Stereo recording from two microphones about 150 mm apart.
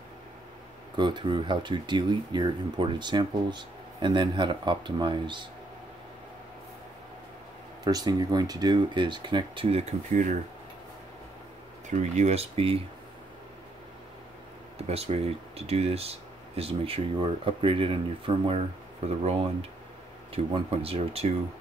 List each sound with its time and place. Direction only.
0.9 s speech: 30° right (ahead or behind)
7.8 s speech: 25° right (ahead or behind); by 10.2 s 45° right (ahead or behind)
11.9 s speech: 50° right (ahead or behind)
14.9 s speech: 45° right (ahead or behind)
20.5 s speech: 40° right (ahead or behind)